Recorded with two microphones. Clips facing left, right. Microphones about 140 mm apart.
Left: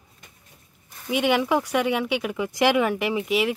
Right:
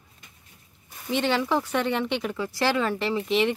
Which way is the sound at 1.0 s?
10° left (ahead or behind).